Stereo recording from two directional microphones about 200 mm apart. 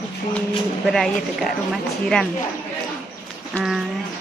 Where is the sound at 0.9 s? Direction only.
Centre (ahead or behind).